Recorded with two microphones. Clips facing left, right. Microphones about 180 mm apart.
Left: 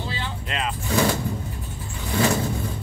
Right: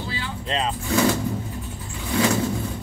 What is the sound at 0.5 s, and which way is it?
Vehicle, 30° right (ahead or behind).